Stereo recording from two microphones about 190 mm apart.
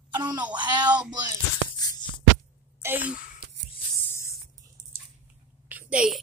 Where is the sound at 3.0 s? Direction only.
45° left (ahead or behind).